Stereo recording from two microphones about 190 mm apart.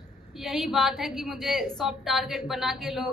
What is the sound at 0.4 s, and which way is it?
A woman's voice, centre (ahead or behind).